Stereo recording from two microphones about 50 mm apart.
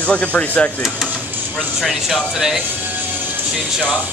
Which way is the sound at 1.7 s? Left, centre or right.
Centre.